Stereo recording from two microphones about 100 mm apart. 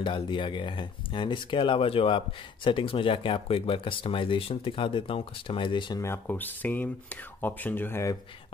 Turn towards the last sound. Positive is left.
turn(degrees=20)  # may be behind; listen again after turning